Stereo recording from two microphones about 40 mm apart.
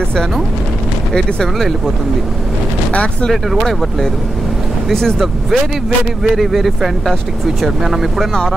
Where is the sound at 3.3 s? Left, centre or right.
Centre.